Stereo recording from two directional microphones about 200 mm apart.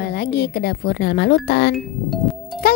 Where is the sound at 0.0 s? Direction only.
55° left (ahead or behind).